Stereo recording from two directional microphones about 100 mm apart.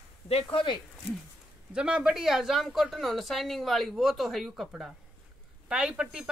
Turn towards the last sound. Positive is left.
turn(degrees=-5)  # may be behind; listen again after turning